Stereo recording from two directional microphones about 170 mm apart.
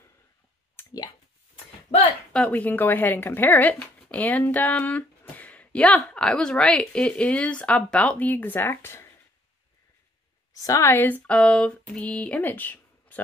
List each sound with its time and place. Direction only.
0.7 s clicking: 25° left (ahead or behind)
2.3 s speech: 5° left (ahead or behind)
10.5 s speech: 20° left (ahead or behind)